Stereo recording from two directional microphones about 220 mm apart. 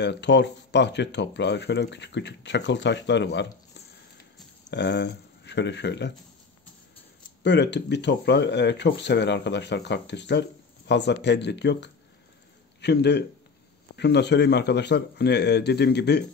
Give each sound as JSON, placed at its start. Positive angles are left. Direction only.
{"t": 0.0, "sound": "speech", "side_deg": 50}
{"t": 4.6, "sound": "speech", "side_deg": 50}
{"t": 7.4, "sound": "speech", "side_deg": 50}